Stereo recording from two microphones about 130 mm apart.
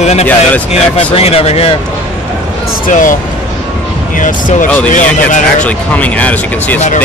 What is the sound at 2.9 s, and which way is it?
Speech, 90° left.